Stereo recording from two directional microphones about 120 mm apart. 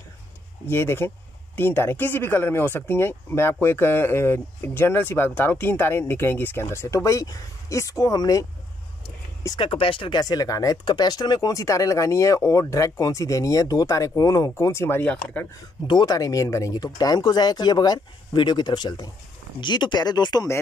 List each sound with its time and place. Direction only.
0.7 s speech: 20° left (ahead or behind)
9.6 s speech: 45° left (ahead or behind); by 15.4 s 10° left (ahead or behind)
15.9 s speech: 35° left (ahead or behind)